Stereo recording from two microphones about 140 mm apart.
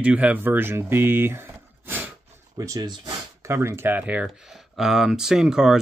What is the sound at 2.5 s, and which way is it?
Speech, 25° right (ahead or behind).